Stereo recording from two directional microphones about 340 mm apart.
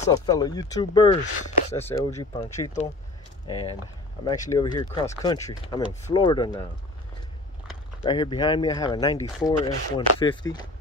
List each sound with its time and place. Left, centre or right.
0.0 s speech: centre
4.2 s speech: centre
8.0 s speech: centre